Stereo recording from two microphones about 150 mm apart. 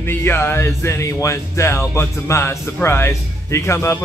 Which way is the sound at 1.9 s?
20° left (ahead or behind).